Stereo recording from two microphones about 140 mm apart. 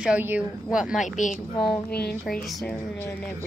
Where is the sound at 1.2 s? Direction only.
65° left (ahead or behind).